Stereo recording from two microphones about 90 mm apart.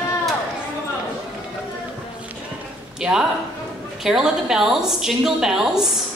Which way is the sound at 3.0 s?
5° right (ahead or behind).